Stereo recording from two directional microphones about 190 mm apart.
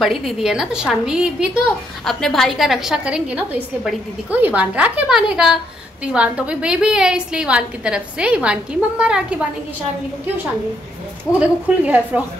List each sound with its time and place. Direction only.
0.0 s a woman's voice: centre (ahead or behind)
11.3 s a woman's voice: 10° right (ahead or behind)